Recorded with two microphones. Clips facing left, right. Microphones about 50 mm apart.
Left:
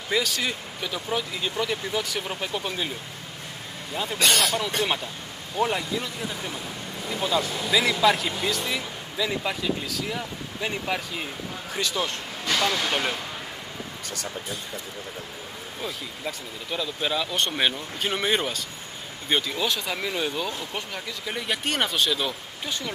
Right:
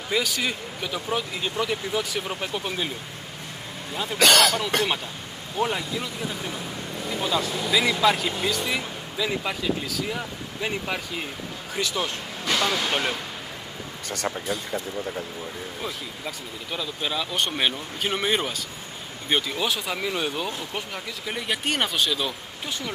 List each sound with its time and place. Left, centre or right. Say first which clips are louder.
0.1 s speech: even; centre
3.9 s speech: even; centre
4.2 s speech: right 5 dB; right
5.6 s speech: left 1 dB; centre
16.3 s speech: left 2 dB; centre
20.2 s speech: even; centre
20.5 s speech: right 1 dB; centre